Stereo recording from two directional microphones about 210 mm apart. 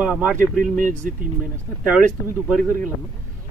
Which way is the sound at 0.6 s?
40° right (ahead or behind).